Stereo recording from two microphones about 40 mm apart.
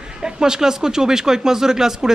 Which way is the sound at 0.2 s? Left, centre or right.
Centre.